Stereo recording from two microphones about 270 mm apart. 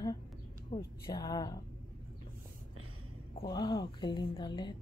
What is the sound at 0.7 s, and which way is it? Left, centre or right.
Speech, centre.